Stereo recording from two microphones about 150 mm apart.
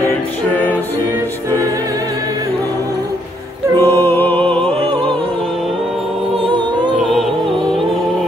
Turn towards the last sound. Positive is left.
turn(degrees=0)  # may be behind; listen again after turning